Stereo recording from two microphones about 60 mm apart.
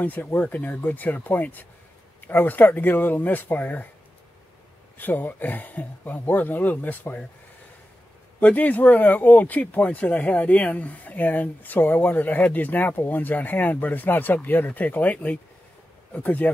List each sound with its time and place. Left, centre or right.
0.0 s speech: left
4.9 s speech: left
8.4 s speech: left